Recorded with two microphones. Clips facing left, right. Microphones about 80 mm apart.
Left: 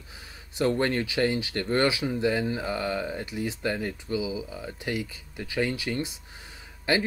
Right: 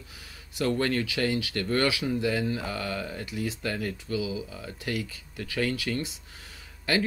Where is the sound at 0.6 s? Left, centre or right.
Left.